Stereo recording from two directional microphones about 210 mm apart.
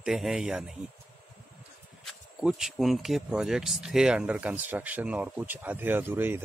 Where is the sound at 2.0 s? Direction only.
Centre (ahead or behind).